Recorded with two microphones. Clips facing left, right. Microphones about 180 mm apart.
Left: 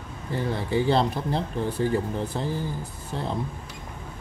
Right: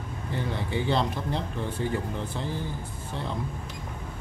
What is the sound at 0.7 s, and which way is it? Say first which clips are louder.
Speech: left 5 dB; 35° left (ahead or behind).